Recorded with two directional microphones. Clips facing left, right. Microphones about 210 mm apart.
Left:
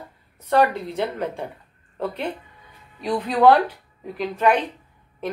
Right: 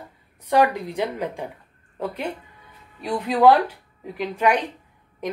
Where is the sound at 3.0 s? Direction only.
10° right (ahead or behind).